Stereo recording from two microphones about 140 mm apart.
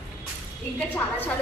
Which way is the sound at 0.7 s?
10° left (ahead or behind).